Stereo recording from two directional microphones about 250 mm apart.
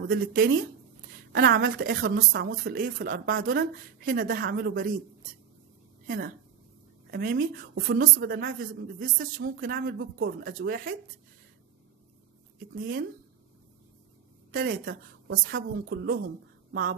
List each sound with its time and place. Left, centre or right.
0.0 s a woman's voice: right
6.0 s a woman's voice: right
12.7 s a woman's voice: right
14.5 s a woman's voice: right